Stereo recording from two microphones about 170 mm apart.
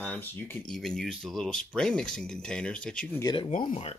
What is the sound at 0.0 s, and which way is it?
Speech, 10° left (ahead or behind).